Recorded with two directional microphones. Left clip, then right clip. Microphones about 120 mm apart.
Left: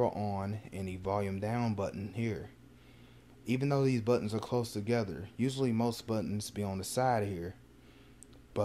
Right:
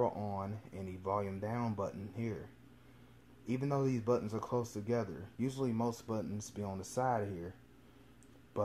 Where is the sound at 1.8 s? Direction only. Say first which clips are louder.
Left 4 dB; 40° left (ahead or behind).